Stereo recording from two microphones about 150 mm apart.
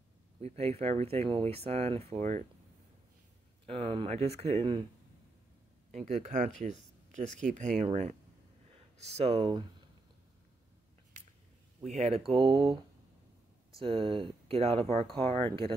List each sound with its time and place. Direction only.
0.4 s speech: 45° right (ahead or behind)
3.6 s speech: 35° right (ahead or behind)
6.0 s speech: 50° right (ahead or behind); by 9.7 s 35° right (ahead or behind)
11.8 s speech: 45° right (ahead or behind)
12.3 s speech: 35° right (ahead or behind)
13.7 s speech: 35° right (ahead or behind)